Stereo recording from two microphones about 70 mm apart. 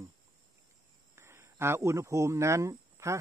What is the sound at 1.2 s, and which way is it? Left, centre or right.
Speech, right.